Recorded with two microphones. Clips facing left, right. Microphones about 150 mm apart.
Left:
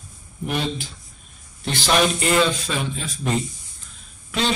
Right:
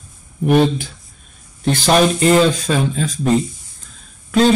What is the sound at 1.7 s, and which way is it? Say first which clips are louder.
Speech: right 6 dB; 40° right (ahead or behind).